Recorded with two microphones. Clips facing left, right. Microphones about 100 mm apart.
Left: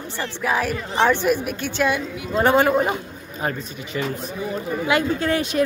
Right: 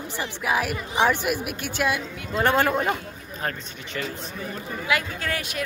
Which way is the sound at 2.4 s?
5° left (ahead or behind).